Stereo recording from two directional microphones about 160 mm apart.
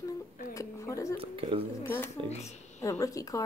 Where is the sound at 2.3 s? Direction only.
45° left (ahead or behind).